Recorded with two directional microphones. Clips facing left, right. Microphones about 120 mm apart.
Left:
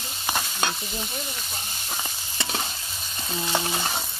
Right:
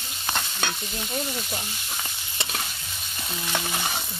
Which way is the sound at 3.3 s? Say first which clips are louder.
Left 3 dB; 20° left (ahead or behind).